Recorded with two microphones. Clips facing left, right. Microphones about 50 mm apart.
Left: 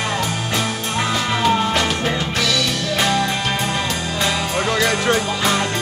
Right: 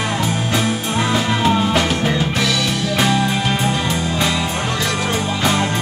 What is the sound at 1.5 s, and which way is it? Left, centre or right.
Music, centre.